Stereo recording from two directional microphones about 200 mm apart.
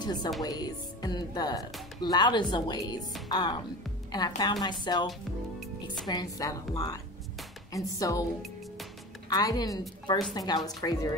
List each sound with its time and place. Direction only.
0.0 s speech: 20° left (ahead or behind)
6.0 s a woman's voice: 20° left (ahead or behind)
9.3 s speech: 20° left (ahead or behind)